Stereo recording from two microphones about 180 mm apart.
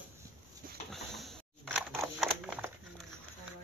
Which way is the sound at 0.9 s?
Centre (ahead or behind).